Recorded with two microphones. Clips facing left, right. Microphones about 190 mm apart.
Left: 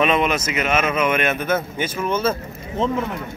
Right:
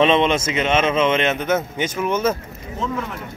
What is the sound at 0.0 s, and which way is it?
A man's voice, 25° right (ahead or behind).